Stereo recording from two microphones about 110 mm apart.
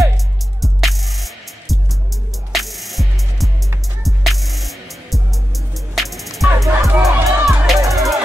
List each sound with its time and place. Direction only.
0.6 s music: centre (ahead or behind)
7.0 s music: 30° right (ahead or behind)
7.4 s music: centre (ahead or behind)